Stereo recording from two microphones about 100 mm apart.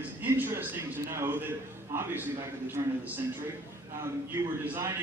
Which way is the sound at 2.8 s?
45° right (ahead or behind).